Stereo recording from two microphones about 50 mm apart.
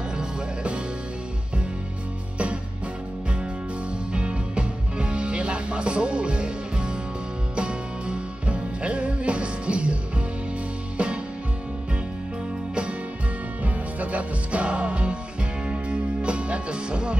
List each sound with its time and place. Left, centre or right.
2.3 s music: right
4.1 s music: right
13.9 s music: right